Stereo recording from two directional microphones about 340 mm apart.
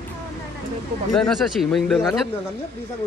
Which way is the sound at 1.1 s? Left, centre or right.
Centre.